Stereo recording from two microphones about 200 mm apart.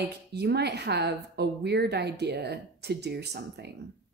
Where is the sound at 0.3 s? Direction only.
55° right (ahead or behind).